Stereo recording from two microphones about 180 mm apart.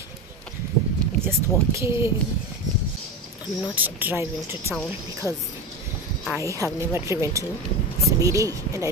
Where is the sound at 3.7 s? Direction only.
10° right (ahead or behind).